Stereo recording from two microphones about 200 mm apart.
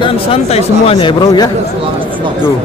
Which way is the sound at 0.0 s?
30° left (ahead or behind).